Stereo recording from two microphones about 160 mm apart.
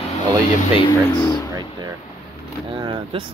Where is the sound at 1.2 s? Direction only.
25° left (ahead or behind).